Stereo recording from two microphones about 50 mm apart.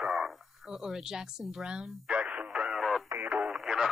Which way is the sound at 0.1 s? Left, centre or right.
Centre.